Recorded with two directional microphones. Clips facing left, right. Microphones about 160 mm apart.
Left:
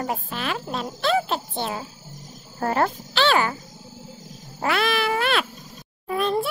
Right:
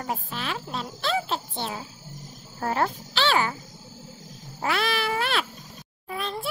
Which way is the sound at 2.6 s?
55° left (ahead or behind).